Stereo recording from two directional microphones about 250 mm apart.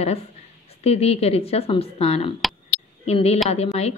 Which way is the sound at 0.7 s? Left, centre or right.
Left.